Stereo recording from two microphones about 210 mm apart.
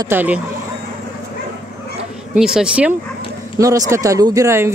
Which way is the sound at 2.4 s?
5° right (ahead or behind).